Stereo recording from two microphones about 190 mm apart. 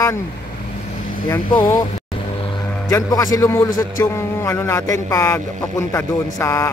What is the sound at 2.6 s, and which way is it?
A man's voice, 15° left (ahead or behind).